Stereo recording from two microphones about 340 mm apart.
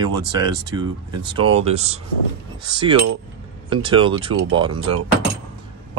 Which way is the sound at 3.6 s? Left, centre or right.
Centre.